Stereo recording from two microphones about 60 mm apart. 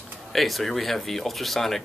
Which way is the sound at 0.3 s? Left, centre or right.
Centre.